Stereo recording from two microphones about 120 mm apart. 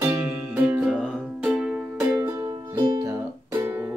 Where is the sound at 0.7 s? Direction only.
10° right (ahead or behind).